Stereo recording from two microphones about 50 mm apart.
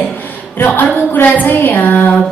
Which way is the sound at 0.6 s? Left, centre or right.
Left.